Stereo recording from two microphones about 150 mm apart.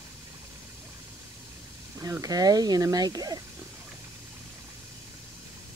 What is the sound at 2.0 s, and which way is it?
Speech, 20° right (ahead or behind).